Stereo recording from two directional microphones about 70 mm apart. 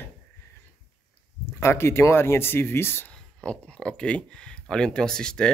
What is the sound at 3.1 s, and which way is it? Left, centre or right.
Speech, centre.